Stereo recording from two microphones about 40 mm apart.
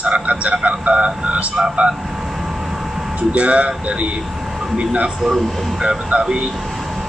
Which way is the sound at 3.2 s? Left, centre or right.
Right.